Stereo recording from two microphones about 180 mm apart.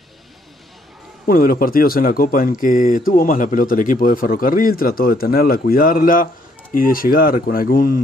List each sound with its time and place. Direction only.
1.2 s speech: 55° left (ahead or behind)